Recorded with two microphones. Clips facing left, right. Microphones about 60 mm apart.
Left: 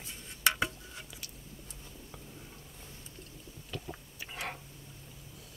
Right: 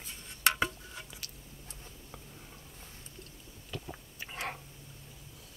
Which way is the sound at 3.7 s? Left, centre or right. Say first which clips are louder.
Even; centre.